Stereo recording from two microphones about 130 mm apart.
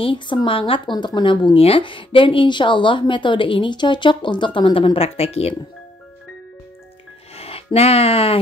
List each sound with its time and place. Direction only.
0.0 s speech: 40° left (ahead or behind)
7.3 s speech: 50° left (ahead or behind)